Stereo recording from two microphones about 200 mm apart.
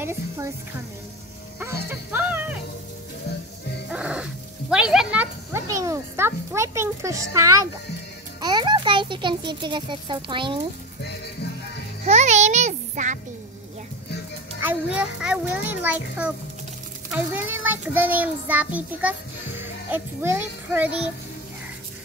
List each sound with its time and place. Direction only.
0.0 s speech: 10° right (ahead or behind)
1.6 s speech: 10° right (ahead or behind)
3.9 s a sound: 5° right (ahead or behind)
8.4 s a child's voice: 20° right (ahead or behind)
12.0 s a child's voice: 35° right (ahead or behind)
14.6 s a child's voice: 10° right (ahead or behind)